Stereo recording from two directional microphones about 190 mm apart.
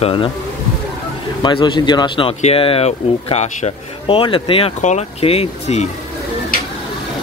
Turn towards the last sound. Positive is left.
turn(degrees=35)  # may be behind; listen again after turning